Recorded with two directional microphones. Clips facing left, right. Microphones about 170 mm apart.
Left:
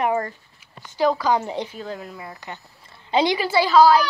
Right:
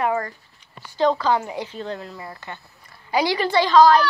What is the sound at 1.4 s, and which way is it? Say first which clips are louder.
Speech: left 2 dB; 25° left (ahead or behind).